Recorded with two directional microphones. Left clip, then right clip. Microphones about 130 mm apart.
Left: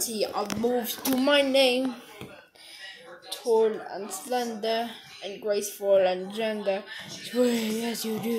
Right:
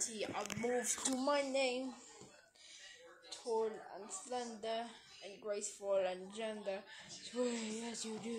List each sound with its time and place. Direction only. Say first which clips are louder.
0.0 s speech: left 14 dB; 40° left (ahead or behind)
0.4 s speech: left 10 dB; centre (ahead or behind)
1.2 s speech: left 15 dB; 10° left (ahead or behind)
3.5 s speech: left 15 dB; 10° left (ahead or behind)